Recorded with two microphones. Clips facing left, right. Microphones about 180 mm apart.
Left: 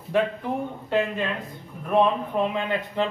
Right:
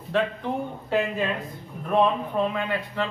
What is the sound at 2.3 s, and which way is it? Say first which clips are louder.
Speech: left 1 dB; 20° left (ahead or behind).